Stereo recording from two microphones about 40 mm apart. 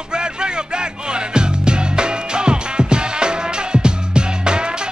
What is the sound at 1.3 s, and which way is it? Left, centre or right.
Music, right.